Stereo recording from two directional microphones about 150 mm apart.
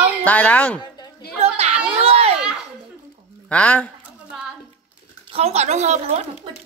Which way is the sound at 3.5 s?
10° left (ahead or behind).